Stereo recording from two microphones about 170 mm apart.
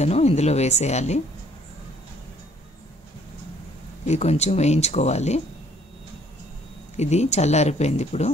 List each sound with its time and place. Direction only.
0.0 s speech: 40° left (ahead or behind)
4.0 s speech: 40° left (ahead or behind)
7.0 s speech: 40° left (ahead or behind)